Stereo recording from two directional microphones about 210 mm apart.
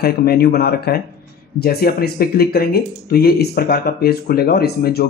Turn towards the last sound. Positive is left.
turn(degrees=50)  # may be behind; listen again after turning